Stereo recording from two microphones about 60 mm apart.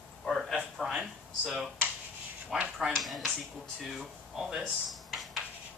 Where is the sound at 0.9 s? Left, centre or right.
Centre.